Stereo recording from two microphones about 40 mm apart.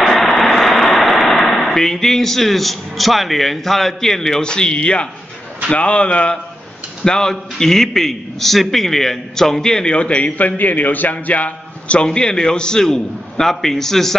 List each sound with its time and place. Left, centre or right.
0.0 s a man's voice: centre; by 6.3 s left
7.1 s a man's voice: centre
9.9 s a man's voice: left
12.0 s a man's voice: left